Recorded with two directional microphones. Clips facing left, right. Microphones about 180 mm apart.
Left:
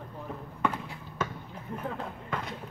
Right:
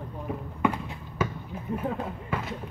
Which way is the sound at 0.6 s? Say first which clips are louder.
Right 4 dB; 10° right (ahead or behind).